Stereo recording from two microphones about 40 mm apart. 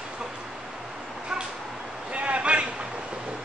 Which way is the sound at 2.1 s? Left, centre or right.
Right.